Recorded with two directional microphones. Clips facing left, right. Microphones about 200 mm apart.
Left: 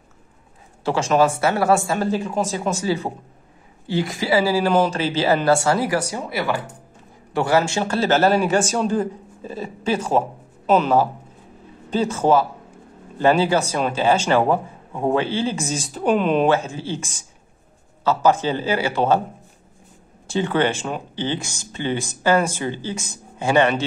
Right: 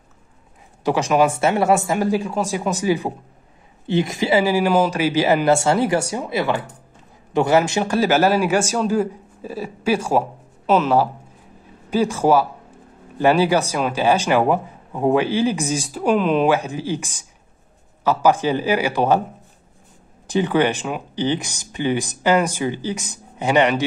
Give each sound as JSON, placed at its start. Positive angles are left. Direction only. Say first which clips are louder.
{"t": 0.8, "sound": "speech", "louder": "right 1 dB", "side_deg": -15}
{"t": 4.6, "sound": "speech", "louder": "right 1 dB", "side_deg": -10}
{"t": 11.9, "sound": "speech", "louder": "right 1 dB", "side_deg": -10}
{"t": 16.4, "sound": "speech", "louder": "right 1 dB", "side_deg": -15}
{"t": 20.2, "sound": "speech", "louder": "right 2 dB", "side_deg": -15}